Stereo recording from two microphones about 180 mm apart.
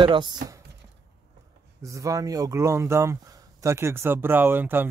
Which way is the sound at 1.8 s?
15° right (ahead or behind).